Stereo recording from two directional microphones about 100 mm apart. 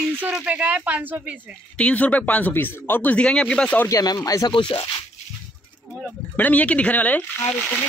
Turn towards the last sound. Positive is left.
turn(degrees=15)  # may be behind; listen again after turning